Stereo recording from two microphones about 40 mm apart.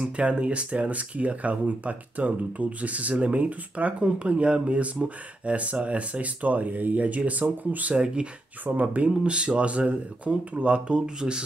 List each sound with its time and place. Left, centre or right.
0.0 s speech: right
7.9 s speech: right